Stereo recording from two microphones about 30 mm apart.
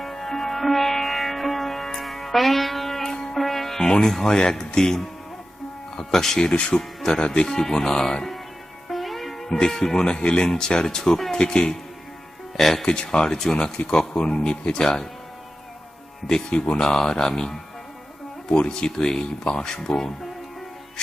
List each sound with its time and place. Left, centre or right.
0.0 s music: centre
4.3 s speech: left
5.9 s speech: centre
7.1 s speech: left
7.4 s speech: centre
8.8 s music: centre
9.5 s speech: left
10.0 s speech: left
10.5 s speech: left
12.5 s speech: centre
12.8 s speech: left
16.7 s speech: left
18.5 s speech: left